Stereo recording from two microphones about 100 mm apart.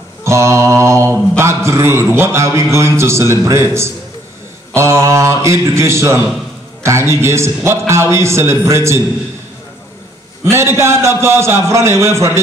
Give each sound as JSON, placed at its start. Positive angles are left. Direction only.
{"t": 0.2, "sound": "mantra", "side_deg": -30}
{"t": 10.4, "sound": "mantra", "side_deg": -25}